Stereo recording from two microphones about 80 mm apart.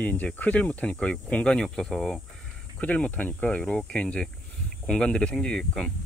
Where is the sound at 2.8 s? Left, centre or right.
Centre.